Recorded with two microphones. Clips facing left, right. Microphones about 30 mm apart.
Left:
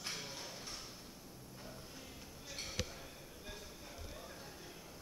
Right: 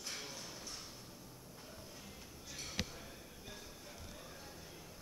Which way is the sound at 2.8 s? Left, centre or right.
Centre.